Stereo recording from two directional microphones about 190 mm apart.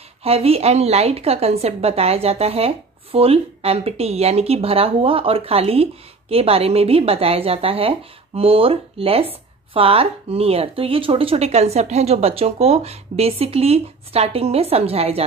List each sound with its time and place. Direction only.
0.2 s a woman's voice: 30° right (ahead or behind)